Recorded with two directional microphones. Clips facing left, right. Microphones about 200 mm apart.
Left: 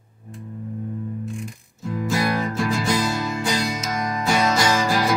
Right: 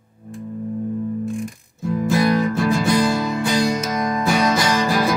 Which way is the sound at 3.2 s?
55° right (ahead or behind).